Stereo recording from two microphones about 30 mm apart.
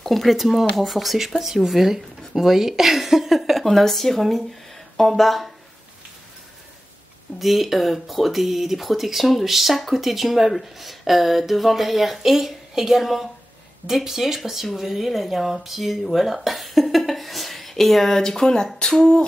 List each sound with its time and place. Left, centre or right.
0.0 s speech: centre
0.4 s speech: centre
1.4 s a woman's voice: centre
3.6 s speech: centre
7.3 s a woman's voice: centre